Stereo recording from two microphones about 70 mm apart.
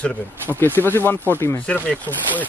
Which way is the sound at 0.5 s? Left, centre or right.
Left.